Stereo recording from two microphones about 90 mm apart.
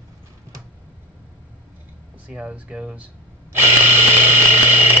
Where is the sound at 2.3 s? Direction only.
10° right (ahead or behind).